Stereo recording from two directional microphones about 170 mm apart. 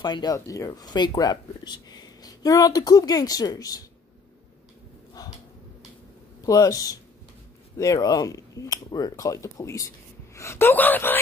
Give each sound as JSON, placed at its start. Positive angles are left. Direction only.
{"t": 0.0, "sound": "speech", "side_deg": 25}
{"t": 5.2, "sound": "a sound", "side_deg": 20}
{"t": 6.4, "sound": "speech", "side_deg": 20}